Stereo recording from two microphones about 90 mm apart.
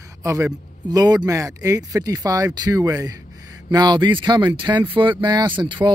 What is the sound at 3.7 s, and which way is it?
Speech, 50° right (ahead or behind).